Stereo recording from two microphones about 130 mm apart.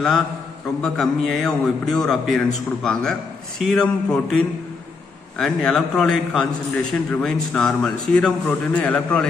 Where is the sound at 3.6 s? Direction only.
5° left (ahead or behind).